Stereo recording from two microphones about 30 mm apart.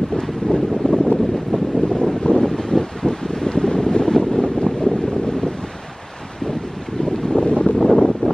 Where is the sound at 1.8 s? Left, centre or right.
Left.